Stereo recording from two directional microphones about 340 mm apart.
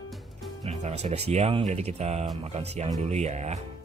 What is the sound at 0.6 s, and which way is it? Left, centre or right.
Speech, centre.